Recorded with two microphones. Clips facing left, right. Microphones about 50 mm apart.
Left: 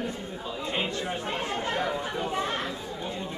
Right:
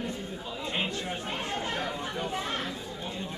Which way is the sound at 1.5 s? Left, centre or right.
Centre.